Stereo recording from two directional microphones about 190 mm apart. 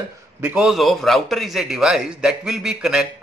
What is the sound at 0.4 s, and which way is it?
A man's voice, 5° right (ahead or behind).